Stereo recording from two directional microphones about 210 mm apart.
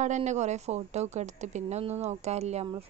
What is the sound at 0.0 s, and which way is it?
A woman's voice, 35° right (ahead or behind).